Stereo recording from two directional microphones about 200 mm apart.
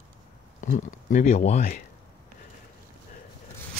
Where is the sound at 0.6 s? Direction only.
40° left (ahead or behind).